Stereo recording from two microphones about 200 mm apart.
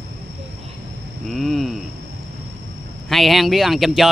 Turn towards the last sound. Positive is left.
turn(degrees=0)  # may be behind; listen again after turning